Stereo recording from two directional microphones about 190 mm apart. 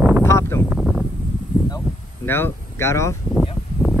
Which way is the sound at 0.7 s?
5° right (ahead or behind).